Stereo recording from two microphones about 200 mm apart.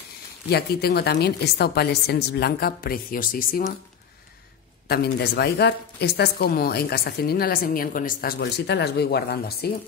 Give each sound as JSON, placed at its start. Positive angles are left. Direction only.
{"t": 0.5, "sound": "a woman's voice", "side_deg": 55}
{"t": 4.8, "sound": "a woman's voice", "side_deg": 55}